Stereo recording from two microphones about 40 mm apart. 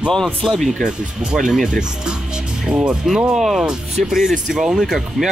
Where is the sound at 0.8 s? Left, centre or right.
Centre.